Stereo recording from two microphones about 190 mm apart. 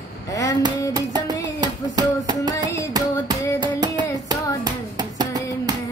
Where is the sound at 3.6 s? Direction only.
20° right (ahead or behind).